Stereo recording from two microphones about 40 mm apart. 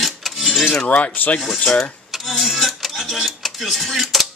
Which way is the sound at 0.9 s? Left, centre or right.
Left.